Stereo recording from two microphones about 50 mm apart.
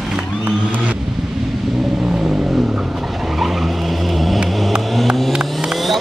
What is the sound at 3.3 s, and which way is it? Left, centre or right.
Vehicle, centre.